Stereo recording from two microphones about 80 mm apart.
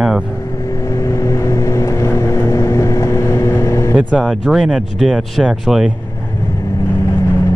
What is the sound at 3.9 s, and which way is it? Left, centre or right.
Speech, centre.